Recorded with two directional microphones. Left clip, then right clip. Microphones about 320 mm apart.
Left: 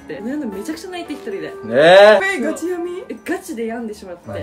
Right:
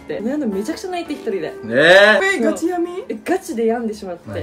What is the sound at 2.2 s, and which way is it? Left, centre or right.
A woman's voice, centre.